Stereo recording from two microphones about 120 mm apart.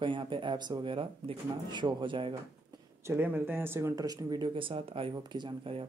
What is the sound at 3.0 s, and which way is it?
Speech, 20° right (ahead or behind).